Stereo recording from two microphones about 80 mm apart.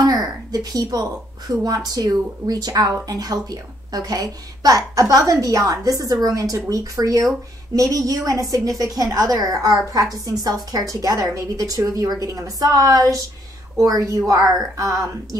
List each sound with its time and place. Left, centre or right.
0.0 s speech: right